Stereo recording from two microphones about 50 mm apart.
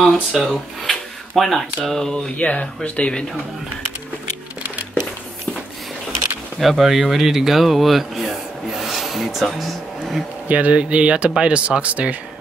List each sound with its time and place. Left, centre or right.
0.0 s speech: centre
2.3 s speech: left
6.6 s speech: centre
10.5 s speech: right